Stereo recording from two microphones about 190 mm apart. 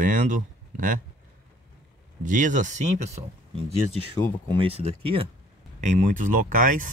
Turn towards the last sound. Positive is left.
turn(degrees=-45)  # may be behind; listen again after turning